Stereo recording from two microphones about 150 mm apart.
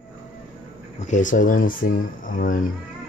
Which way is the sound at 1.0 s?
55° left (ahead or behind).